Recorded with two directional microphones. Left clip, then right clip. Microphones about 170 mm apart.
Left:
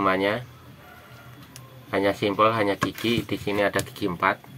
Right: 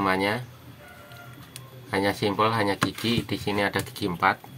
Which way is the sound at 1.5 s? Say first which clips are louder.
Left 1 dB; 25° right (ahead or behind).